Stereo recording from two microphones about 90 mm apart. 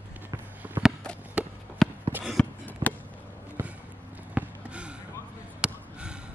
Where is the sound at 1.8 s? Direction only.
5° left (ahead or behind).